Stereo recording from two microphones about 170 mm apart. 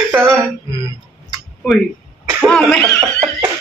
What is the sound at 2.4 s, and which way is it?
Speech, 5° left (ahead or behind).